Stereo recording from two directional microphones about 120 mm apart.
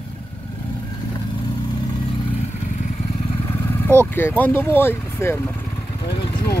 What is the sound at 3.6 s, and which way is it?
Speech, 20° left (ahead or behind).